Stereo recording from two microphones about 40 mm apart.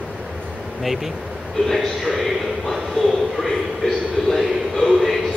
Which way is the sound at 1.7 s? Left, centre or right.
Centre.